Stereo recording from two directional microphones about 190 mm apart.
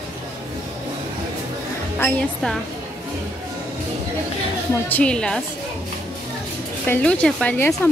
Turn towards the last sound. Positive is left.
turn(degrees=10)  # may be behind; listen again after turning